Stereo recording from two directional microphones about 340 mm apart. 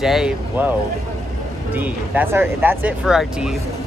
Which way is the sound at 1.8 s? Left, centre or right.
Centre.